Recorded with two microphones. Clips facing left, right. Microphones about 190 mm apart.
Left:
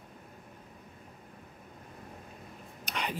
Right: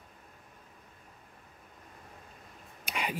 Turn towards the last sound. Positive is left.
turn(degrees=-10)  # may be behind; listen again after turning